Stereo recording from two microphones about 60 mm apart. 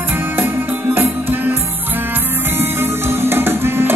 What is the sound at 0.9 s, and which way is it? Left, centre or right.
Music, right.